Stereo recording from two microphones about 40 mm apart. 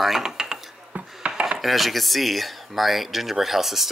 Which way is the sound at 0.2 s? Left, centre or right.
Centre.